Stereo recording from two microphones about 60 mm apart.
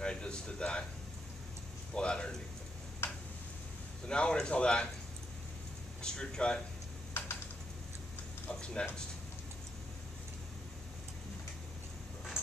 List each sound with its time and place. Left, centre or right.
0.0 s speech: centre
2.0 s a man's voice: centre
3.0 s tick-tock: left
4.1 s a man's voice: centre
6.0 s a man's voice: centre
8.5 s a man's voice: centre